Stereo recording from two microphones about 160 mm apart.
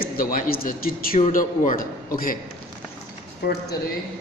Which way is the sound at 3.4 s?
90° left.